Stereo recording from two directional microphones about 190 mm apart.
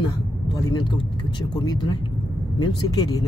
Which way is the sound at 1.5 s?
25° left (ahead or behind).